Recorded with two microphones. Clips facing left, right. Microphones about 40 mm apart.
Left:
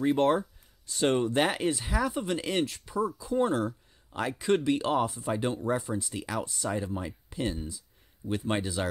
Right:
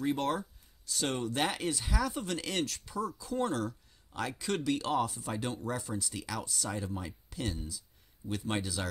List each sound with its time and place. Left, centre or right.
0.0 s speech: left